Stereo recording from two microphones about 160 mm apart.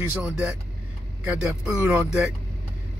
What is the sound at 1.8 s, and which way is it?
Speech, 15° right (ahead or behind).